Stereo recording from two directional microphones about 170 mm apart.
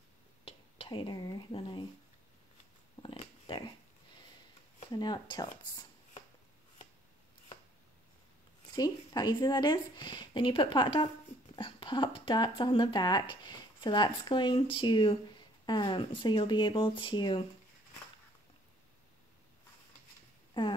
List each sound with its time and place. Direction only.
0.5 s speech: 30° left (ahead or behind)
3.0 s a sound: 30° left (ahead or behind)
4.9 s speech: 25° left (ahead or behind)
8.7 s speech: 25° left (ahead or behind)
20.5 s speech: 30° left (ahead or behind)